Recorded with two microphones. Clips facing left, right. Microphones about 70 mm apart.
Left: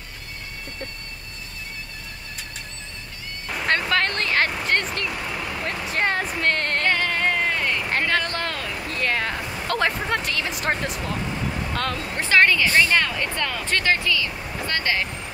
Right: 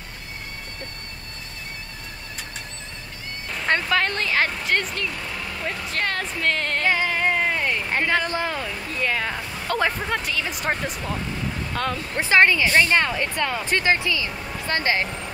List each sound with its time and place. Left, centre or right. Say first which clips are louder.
3.9 s speech: even; centre
5.9 s speech: left 4 dB; centre
6.4 s a sound: right 1 dB; centre
7.9 s speech: right 2 dB; centre
12.2 s speech: right 1 dB; right